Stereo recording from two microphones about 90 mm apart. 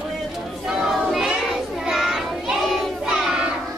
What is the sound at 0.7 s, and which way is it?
Child singing, 5° right (ahead or behind).